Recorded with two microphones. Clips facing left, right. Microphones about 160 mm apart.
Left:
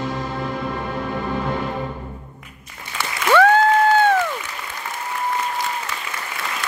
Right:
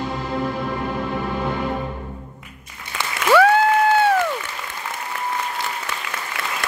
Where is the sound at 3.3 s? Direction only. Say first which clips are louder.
Even; 10° right (ahead or behind).